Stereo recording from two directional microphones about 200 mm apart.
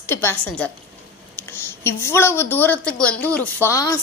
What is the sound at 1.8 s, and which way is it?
A woman's voice, 10° left (ahead or behind).